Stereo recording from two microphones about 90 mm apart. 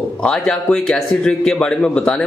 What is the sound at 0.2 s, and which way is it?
A man's voice, 10° left (ahead or behind).